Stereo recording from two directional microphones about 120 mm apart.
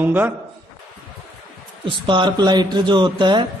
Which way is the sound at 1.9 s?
40° right (ahead or behind).